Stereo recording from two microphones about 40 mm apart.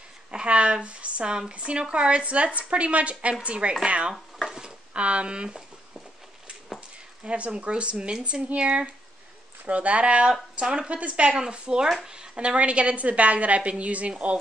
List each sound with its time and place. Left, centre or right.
0.3 s a woman's voice: right
4.5 s a sound: centre
7.2 s a woman's voice: right
10.5 s speech: right
11.0 s a woman's voice: right
11.3 s a woman's voice: right